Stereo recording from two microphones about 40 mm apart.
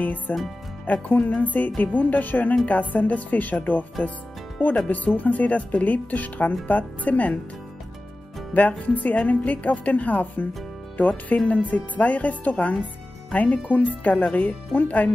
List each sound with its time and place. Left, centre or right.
0.3 s speech: left
0.8 s music: left
2.6 s speech: left
4.8 s speech: left
8.5 s speech: left